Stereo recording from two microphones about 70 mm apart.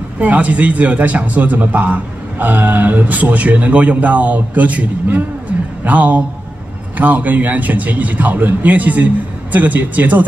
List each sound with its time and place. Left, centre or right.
0.2 s speech: right